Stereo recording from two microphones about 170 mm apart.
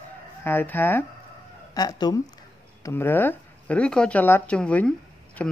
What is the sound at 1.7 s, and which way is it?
Speech, 25° left (ahead or behind).